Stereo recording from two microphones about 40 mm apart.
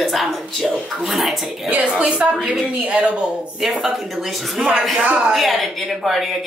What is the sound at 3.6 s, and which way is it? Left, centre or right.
Speech, centre.